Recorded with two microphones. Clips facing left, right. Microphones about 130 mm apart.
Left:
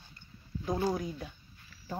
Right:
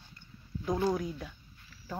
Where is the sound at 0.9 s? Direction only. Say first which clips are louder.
Right 1 dB; 10° left (ahead or behind).